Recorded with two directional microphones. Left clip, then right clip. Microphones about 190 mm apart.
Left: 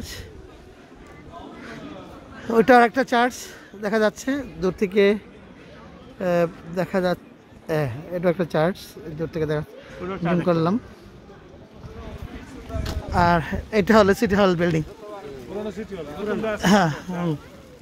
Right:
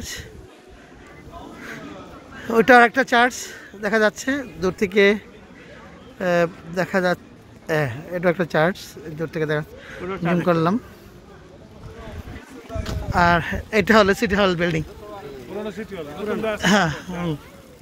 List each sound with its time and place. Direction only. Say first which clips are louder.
2.4 s speech: right 2 dB; 15° left (ahead or behind)
10.0 s speech: right 1 dB; 65° left (ahead or behind)
10.4 s speech: right 2 dB; 5° left (ahead or behind)
13.1 s speech: right 2 dB; 15° left (ahead or behind)
13.9 s speech: even; 30° left (ahead or behind)
15.6 s a man's voice: right 2 dB; 45° left (ahead or behind)
16.5 s speech: even; 30° left (ahead or behind)